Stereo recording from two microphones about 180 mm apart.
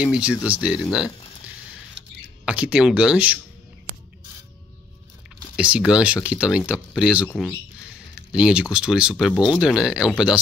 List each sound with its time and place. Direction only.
0.0 s speech: 5° right (ahead or behind)
2.0 s a sound: 80° right
2.4 s speech: 5° right (ahead or behind)
5.6 s speech: 5° right (ahead or behind)
8.3 s speech: 5° right (ahead or behind)